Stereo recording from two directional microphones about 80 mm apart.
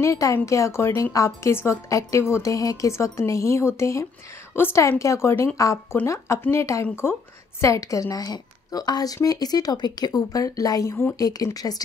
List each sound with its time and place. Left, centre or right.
0.0 s a woman's voice: left